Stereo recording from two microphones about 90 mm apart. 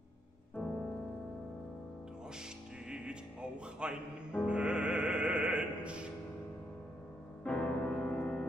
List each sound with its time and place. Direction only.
0.6 s music: 10° left (ahead or behind)
2.9 s speech: 10° right (ahead or behind)
4.5 s music: 10° right (ahead or behind)
7.4 s music: 10° left (ahead or behind)